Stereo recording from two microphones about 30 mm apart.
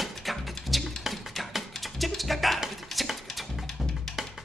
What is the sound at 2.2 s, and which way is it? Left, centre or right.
Music, centre.